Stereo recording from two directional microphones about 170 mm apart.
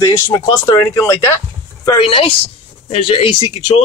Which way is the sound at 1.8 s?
35° left (ahead or behind).